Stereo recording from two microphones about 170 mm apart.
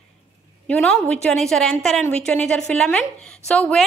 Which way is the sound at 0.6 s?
5° left (ahead or behind).